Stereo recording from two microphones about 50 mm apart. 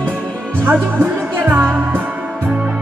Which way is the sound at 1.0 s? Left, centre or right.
Right.